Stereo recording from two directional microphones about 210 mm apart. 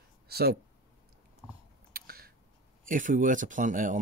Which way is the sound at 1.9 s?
45° right (ahead or behind).